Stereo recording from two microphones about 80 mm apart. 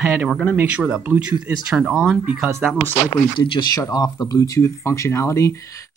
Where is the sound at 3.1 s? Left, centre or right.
Left.